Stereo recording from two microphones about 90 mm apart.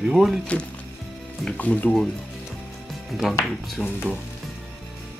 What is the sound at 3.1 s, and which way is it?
Speech, centre (ahead or behind).